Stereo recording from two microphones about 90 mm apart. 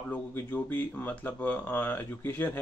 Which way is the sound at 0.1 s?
20° left (ahead or behind).